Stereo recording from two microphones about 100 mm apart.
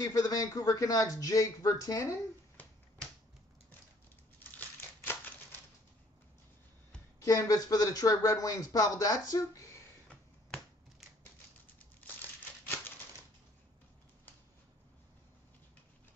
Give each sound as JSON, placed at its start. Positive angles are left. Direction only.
{"t": 0.0, "sound": "speech", "side_deg": 35}
{"t": 4.4, "sound": "crumpling", "side_deg": 20}
{"t": 7.2, "sound": "speech", "side_deg": 35}
{"t": 12.0, "sound": "crumpling", "side_deg": 20}